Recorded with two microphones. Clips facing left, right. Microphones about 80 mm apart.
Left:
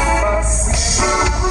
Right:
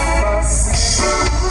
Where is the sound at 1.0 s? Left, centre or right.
Centre.